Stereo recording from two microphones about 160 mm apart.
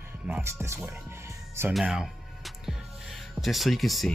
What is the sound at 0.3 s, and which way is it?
Speech, 15° right (ahead or behind).